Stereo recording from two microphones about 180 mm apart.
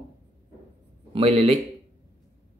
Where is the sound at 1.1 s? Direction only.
35° right (ahead or behind).